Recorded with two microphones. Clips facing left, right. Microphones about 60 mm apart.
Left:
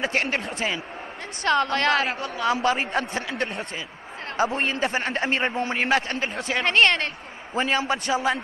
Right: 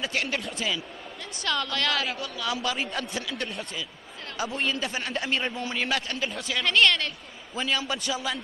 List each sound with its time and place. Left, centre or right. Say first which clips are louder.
0.0 s a man's voice: left 4 dB; left